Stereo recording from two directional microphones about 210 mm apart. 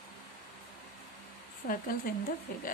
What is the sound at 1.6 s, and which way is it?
Speech, 35° left (ahead or behind).